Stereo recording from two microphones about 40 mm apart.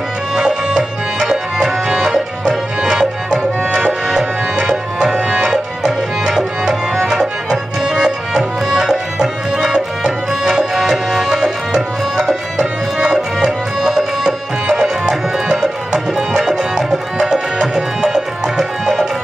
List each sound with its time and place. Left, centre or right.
1.3 s music: centre
5.1 s tabla: right
5.5 s music: centre
8.0 s music: centre
13.4 s music: centre